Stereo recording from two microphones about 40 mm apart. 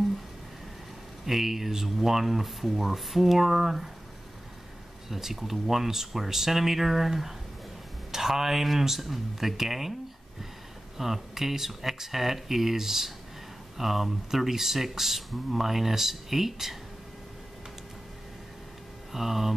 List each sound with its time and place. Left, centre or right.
1.2 s speech: centre
5.1 s speech: centre
11.0 s speech: centre
19.1 s speech: centre